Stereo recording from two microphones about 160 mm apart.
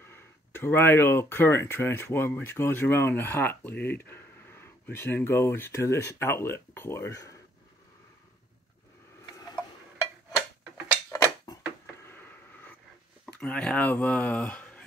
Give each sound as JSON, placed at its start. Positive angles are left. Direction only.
{"t": 0.1, "sound": "speech", "side_deg": 15}
{"t": 11.1, "sound": "a sound", "side_deg": 20}
{"t": 13.4, "sound": "speech", "side_deg": 5}